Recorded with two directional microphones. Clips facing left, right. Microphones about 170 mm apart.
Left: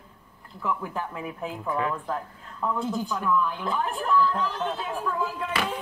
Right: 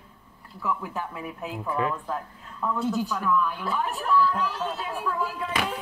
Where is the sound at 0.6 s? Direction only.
5° right (ahead or behind).